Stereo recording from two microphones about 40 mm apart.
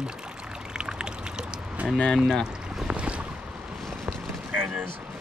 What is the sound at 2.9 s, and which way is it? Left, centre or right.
Boat, right.